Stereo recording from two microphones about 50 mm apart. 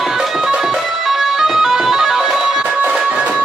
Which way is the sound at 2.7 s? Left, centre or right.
Right.